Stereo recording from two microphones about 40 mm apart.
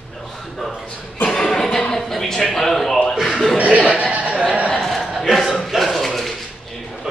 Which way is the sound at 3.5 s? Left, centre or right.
Right.